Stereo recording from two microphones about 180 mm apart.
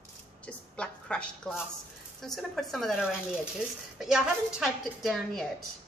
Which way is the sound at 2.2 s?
Centre (ahead or behind).